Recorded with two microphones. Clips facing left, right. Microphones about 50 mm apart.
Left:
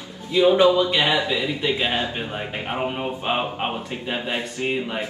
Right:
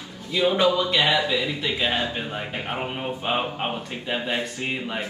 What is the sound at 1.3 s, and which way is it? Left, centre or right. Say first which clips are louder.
Speech: left 2 dB; centre.